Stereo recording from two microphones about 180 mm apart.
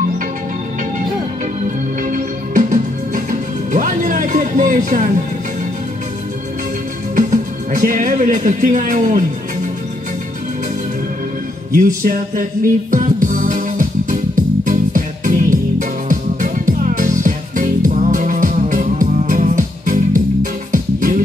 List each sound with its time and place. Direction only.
2.0 s music: 45° right (ahead or behind)
7.2 s speech: 45° right (ahead or behind)
11.7 s speech: 50° right (ahead or behind)
12.9 s music: 45° right (ahead or behind)